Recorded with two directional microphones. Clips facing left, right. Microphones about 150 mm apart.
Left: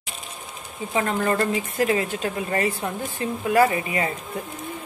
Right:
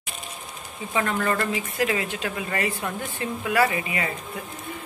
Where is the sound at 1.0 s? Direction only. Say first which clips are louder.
Left 2 dB; 30° left (ahead or behind).